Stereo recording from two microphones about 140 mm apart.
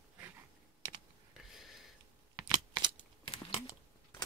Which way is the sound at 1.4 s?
Centre (ahead or behind).